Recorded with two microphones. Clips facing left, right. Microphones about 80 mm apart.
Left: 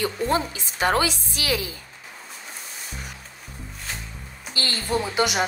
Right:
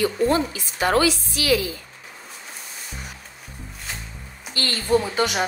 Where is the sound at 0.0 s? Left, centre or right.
Left.